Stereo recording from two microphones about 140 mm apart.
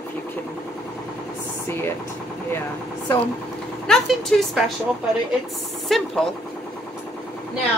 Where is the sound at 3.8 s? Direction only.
Centre (ahead or behind).